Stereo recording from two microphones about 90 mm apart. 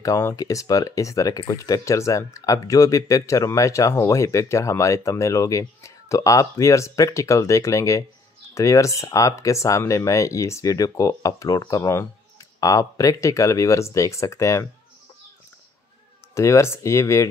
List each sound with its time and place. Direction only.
0.0 s speech: 35° left (ahead or behind)
16.3 s speech: 35° left (ahead or behind)